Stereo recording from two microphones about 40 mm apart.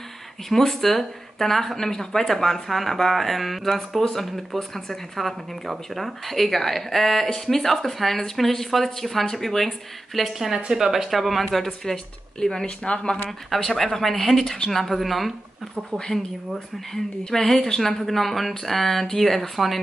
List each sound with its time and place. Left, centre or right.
0.5 s speech: centre
10.2 s speech: centre
12.8 s speech: left
13.6 s speech: centre
14.7 s speech: centre
16.1 s speech: left
17.3 s speech: centre